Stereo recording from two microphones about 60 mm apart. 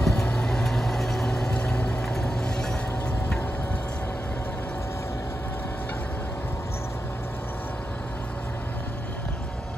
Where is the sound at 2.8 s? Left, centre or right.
Left.